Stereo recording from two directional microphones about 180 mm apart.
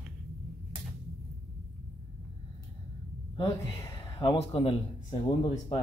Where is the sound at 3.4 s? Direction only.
25° left (ahead or behind).